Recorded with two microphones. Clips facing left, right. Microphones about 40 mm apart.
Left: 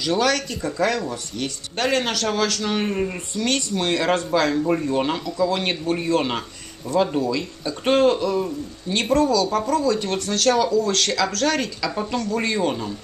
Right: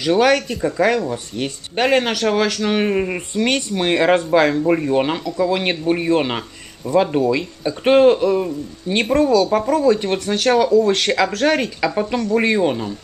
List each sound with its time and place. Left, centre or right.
0.0 s speech: right